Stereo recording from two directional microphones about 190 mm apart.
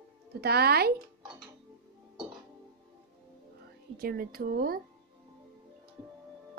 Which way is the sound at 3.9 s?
55° right (ahead or behind).